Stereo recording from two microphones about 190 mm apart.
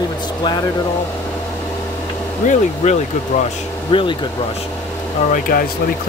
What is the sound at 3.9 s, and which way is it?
Speech, 25° left (ahead or behind).